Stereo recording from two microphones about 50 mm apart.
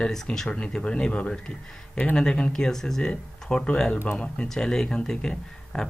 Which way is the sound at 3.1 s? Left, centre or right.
Centre.